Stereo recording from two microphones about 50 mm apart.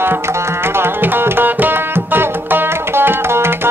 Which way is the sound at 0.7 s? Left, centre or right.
Right.